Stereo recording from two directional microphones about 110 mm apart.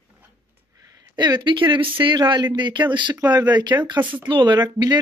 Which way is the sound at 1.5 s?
50° right (ahead or behind).